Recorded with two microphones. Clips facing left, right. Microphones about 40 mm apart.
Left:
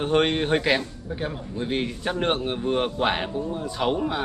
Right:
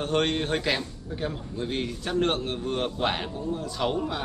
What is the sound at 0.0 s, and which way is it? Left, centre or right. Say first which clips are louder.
A man's voice: left 4 dB; centre.